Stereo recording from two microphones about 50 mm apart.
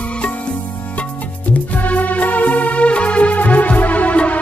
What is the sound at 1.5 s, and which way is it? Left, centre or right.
Music, left.